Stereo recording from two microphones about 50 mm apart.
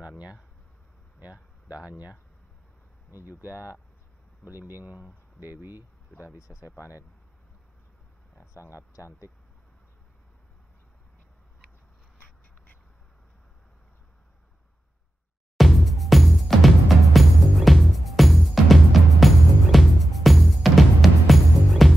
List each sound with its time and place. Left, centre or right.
1.2 s speech: right
3.5 s speech: left
4.5 s speech: right
6.2 s speech: left
8.4 s speech: left
15.5 s music: centre